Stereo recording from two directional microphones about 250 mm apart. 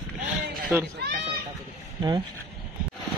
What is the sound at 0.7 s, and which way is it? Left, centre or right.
Speech, centre.